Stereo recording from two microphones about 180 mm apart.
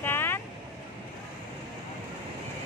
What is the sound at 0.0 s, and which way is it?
Vehicle, 10° left (ahead or behind).